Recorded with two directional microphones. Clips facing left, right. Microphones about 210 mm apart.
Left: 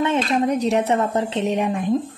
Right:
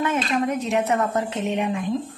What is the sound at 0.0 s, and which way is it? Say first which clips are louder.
A woman's voice: left 3 dB; 30° left (ahead or behind).